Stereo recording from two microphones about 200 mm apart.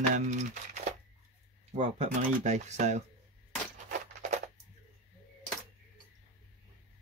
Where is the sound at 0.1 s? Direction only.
35° right (ahead or behind).